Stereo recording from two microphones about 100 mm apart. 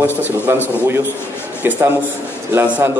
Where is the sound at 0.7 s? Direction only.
20° right (ahead or behind).